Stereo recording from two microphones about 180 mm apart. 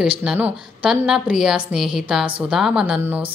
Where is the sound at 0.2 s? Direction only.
5° right (ahead or behind).